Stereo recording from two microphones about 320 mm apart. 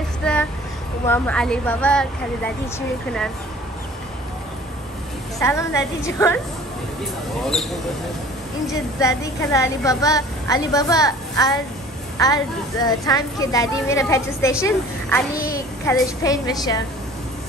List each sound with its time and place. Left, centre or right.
0.2 s child singing: centre
1.0 s a woman's voice: centre
5.4 s a woman's voice: centre
9.0 s a woman's voice: centre
12.8 s a woman's voice: centre
15.3 s a woman's voice: left
15.8 s a woman's voice: centre